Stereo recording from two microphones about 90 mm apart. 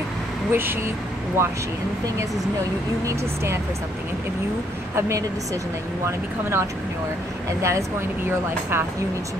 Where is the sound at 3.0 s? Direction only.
30° right (ahead or behind).